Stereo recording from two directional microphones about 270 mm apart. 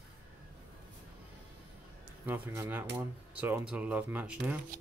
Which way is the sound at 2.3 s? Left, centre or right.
Centre.